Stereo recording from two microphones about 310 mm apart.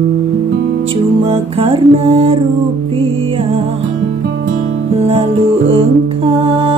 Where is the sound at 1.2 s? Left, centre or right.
Centre.